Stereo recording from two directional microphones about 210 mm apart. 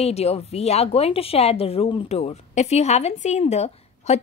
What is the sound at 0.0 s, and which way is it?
A woman's voice, 30° left (ahead or behind).